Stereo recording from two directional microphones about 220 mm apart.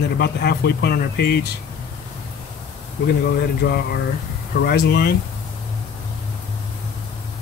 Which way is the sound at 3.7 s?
45° left (ahead or behind).